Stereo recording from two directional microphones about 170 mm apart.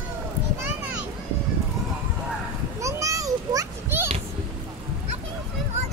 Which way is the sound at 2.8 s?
20° right (ahead or behind).